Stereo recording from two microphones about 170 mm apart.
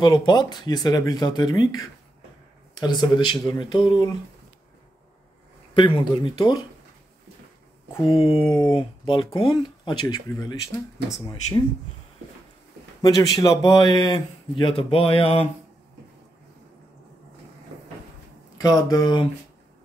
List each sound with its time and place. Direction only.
0.0 s speech: 25° left (ahead or behind)
5.8 s speech: 30° left (ahead or behind)
8.0 s speech: 35° left (ahead or behind)
13.4 s speech: 25° left (ahead or behind)
18.6 s speech: 25° left (ahead or behind)